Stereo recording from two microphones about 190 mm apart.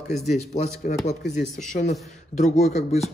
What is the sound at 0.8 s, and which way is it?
Speech, 45° left (ahead or behind).